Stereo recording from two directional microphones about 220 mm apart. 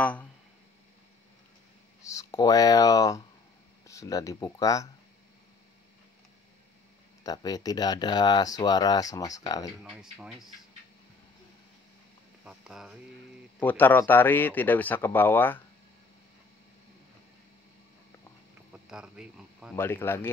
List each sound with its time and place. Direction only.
0.0 s speech: 5° left (ahead or behind)
2.0 s speech: 15° left (ahead or behind)
7.2 s speech: 15° left (ahead or behind)
9.8 s speech: 5° right (ahead or behind)
12.4 s a sound: 5° right (ahead or behind)
13.6 s speech: 10° left (ahead or behind)
18.9 s a sound: 5° right (ahead or behind)
19.7 s speech: 10° left (ahead or behind)